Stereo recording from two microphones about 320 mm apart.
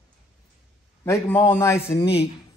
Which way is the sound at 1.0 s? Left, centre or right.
Centre.